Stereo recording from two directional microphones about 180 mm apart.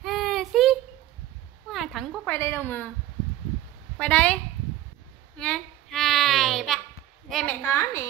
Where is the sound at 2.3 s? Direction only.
10° left (ahead or behind).